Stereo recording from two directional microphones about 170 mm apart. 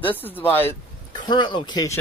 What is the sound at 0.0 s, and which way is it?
Speech, 10° left (ahead or behind).